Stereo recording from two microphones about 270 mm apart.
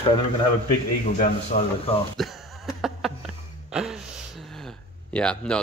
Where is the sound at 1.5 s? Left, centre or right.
Left.